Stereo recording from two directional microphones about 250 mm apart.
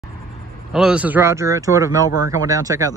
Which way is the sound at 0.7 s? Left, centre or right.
Centre.